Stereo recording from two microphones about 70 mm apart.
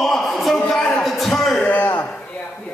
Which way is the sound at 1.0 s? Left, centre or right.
Centre.